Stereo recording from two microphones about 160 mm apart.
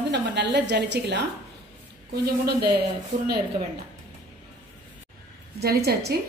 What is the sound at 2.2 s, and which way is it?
Speech, 80° right.